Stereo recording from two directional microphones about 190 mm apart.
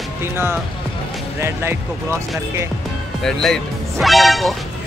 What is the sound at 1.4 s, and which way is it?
Speech, 15° right (ahead or behind).